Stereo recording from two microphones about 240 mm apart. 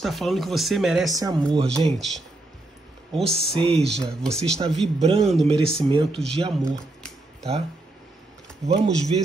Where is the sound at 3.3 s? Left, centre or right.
Right.